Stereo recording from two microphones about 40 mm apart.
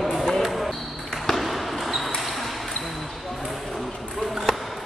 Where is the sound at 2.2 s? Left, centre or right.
Centre.